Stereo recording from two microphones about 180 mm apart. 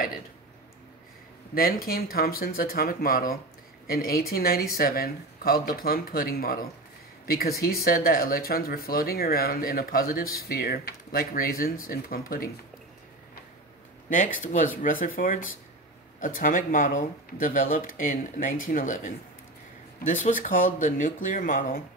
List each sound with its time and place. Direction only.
1.5 s speech: 55° left (ahead or behind)
14.0 s speech: 45° left (ahead or behind)
20.2 s speech: 45° left (ahead or behind)